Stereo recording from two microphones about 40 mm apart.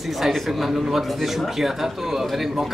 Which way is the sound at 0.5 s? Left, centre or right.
Centre.